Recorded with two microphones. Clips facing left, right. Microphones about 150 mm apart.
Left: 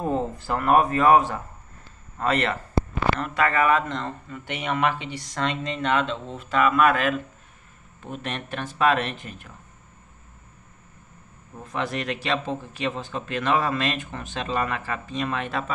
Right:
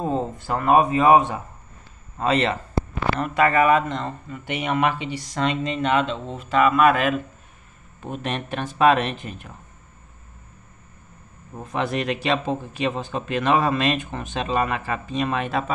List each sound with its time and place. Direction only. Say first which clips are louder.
0.0 s speech: right 1 dB; 20° right (ahead or behind)
11.5 s speech: right 4 dB; 20° right (ahead or behind)